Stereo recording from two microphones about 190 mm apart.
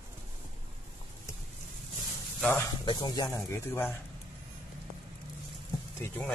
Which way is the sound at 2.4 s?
10° left (ahead or behind).